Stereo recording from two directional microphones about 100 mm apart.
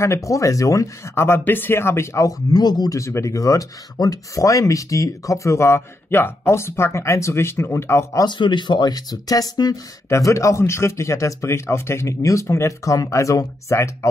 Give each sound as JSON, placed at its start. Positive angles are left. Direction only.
{"t": 0.0, "sound": "speech", "side_deg": 30}
{"t": 8.3, "sound": "speech", "side_deg": 50}